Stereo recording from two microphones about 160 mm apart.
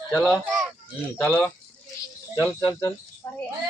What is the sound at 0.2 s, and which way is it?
Speech, centre (ahead or behind).